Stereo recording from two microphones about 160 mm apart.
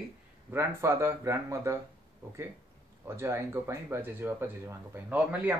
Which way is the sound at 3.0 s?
15° right (ahead or behind).